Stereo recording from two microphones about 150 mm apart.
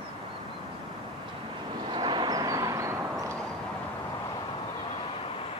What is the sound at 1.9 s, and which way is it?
Vehicle, 30° right (ahead or behind).